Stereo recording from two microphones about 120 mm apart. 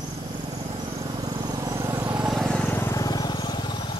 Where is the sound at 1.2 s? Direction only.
35° right (ahead or behind).